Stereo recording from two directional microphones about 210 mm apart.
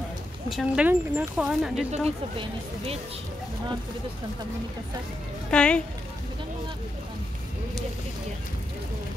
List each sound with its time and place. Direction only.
0.5 s speech: 5° right (ahead or behind)
1.9 s speech: 30° right (ahead or behind)
5.5 s speech: 5° left (ahead or behind)